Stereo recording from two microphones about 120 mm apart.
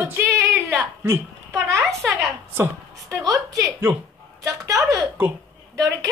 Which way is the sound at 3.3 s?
30° right (ahead or behind).